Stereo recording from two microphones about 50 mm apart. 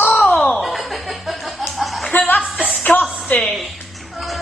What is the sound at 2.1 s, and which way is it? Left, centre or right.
Music, left.